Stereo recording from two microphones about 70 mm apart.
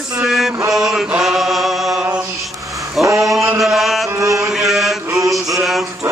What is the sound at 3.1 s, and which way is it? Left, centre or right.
Male singing, centre.